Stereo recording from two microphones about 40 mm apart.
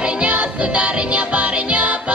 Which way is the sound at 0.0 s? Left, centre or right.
Right.